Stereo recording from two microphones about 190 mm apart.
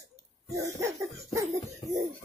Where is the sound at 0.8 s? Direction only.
15° right (ahead or behind).